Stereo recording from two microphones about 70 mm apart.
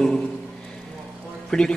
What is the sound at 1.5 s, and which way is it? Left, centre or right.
Speech, centre.